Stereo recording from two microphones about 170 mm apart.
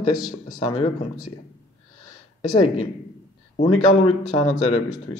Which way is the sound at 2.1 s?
25° left (ahead or behind).